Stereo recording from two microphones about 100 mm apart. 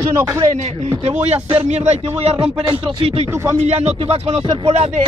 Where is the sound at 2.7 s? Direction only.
75° right (ahead or behind).